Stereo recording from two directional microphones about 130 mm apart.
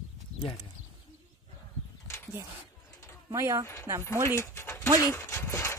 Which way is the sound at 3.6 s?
20° left (ahead or behind).